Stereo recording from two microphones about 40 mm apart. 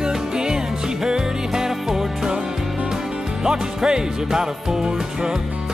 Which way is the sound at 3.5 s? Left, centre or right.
Centre.